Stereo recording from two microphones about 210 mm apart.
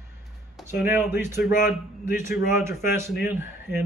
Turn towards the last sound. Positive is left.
turn(degrees=-10)  # may be behind; listen again after turning